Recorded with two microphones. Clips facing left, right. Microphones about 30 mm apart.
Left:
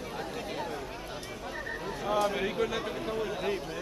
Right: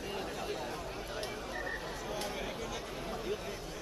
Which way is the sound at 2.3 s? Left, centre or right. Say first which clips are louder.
Left 9 dB; left.